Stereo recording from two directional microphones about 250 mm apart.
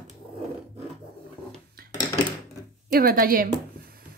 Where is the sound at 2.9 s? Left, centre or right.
Right.